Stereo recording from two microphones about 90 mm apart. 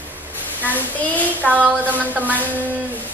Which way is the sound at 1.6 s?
20° right (ahead or behind).